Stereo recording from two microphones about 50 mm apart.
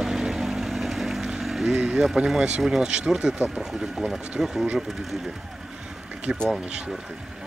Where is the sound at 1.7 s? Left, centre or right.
Centre.